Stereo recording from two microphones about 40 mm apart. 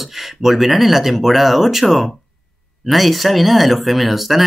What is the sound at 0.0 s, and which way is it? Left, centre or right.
Speech, centre.